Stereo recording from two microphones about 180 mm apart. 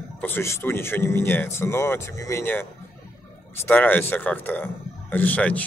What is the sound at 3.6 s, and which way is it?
Speech, 10° left (ahead or behind).